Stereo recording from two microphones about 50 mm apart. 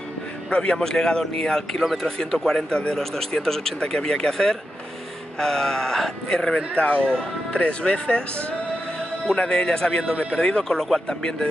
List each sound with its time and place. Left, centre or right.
0.5 s speech: centre